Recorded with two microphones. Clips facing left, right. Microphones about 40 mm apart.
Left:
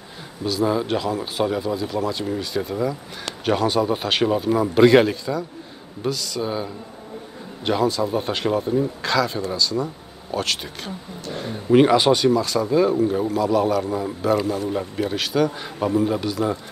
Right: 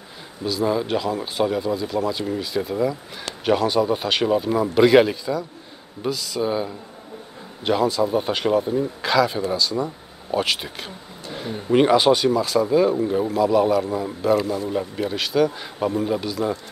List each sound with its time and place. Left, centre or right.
0.4 s speech: centre